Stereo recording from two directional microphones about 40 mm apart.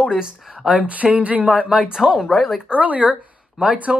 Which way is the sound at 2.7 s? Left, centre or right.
Right.